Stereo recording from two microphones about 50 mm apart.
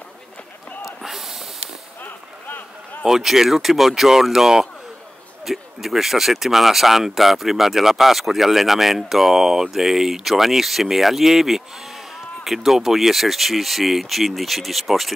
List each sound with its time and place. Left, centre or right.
1.0 s snort: centre
2.0 s a sound: left
3.0 s speech: centre